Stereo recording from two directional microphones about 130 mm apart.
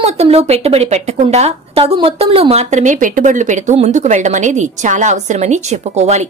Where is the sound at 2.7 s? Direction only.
75° right (ahead or behind).